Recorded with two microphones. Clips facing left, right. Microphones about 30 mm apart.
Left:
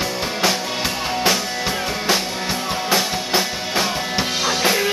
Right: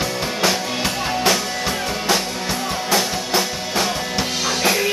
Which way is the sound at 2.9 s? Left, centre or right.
Centre.